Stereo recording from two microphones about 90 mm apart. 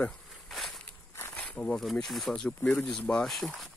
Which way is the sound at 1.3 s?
10° left (ahead or behind).